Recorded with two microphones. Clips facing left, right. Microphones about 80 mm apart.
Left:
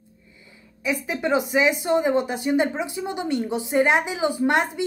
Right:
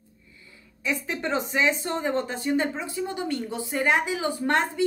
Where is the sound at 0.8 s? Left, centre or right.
Centre.